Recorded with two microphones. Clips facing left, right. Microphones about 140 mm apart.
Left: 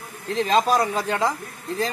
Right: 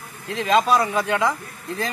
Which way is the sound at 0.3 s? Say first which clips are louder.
Right 1 dB; 35° left (ahead or behind).